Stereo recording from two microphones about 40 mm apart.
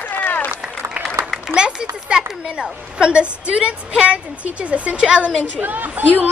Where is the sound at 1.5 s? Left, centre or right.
Right.